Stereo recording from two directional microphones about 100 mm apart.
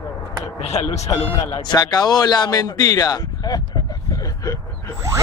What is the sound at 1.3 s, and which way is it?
Speech, 45° left (ahead or behind).